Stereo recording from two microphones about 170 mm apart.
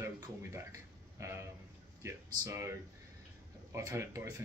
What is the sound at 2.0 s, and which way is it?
Speech, 15° right (ahead or behind).